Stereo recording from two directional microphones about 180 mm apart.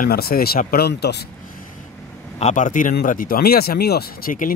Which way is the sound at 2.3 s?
40° left (ahead or behind).